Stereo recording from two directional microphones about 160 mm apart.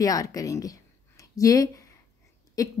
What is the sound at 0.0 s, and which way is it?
A woman's voice, 20° left (ahead or behind).